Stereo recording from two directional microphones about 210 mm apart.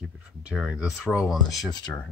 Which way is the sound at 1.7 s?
15° left (ahead or behind).